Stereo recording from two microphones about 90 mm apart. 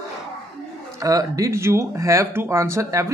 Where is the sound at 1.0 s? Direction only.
40° right (ahead or behind).